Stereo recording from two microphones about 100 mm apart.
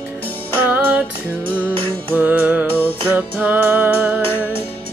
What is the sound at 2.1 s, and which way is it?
Music, 15° right (ahead or behind).